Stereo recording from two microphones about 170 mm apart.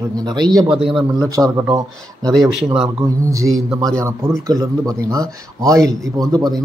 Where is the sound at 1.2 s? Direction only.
20° right (ahead or behind).